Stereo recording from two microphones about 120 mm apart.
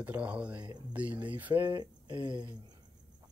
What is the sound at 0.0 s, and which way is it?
Speech, 10° right (ahead or behind).